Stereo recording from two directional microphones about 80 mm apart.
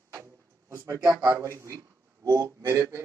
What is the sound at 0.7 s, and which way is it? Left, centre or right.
A man's voice, right.